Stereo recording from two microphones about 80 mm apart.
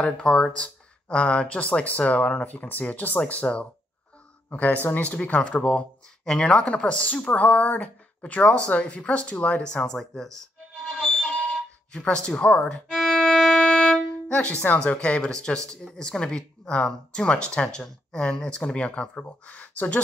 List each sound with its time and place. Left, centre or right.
0.0 s speech: centre
10.9 s a sound: centre
12.9 s violin: centre
14.9 s speech: centre